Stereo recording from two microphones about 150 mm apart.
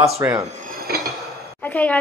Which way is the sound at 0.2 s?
20° right (ahead or behind).